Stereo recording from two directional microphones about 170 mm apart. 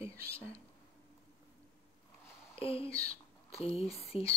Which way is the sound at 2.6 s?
35° left (ahead or behind).